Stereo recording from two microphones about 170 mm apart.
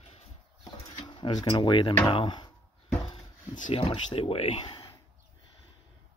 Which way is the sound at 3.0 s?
30° left (ahead or behind).